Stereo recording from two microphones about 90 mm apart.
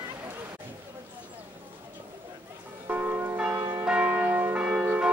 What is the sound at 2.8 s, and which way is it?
Church bell, 20° right (ahead or behind).